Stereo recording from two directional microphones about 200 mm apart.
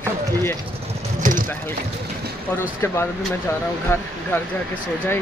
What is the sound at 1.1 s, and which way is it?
Clip-clop, 40° right (ahead or behind).